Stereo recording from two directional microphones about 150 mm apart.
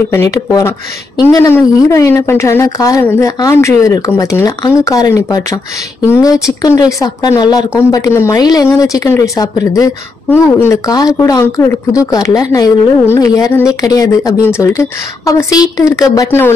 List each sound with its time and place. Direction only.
0.1 s a woman's voice: 20° left (ahead or behind)
6.6 s a woman's voice: 20° left (ahead or behind)